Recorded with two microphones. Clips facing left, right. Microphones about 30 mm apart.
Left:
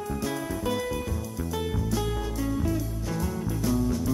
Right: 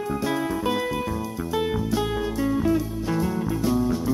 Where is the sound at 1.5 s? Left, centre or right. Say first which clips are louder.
Right 6 dB; right.